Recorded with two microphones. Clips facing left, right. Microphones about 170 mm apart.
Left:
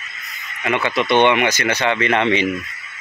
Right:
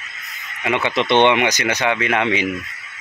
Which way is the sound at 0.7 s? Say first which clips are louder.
Even; 20° right (ahead or behind).